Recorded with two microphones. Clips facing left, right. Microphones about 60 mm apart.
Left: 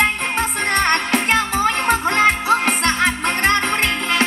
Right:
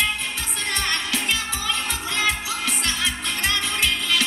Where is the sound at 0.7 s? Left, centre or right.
Left.